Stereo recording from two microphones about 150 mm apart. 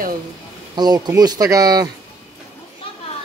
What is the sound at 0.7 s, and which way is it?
Speech, 25° right (ahead or behind).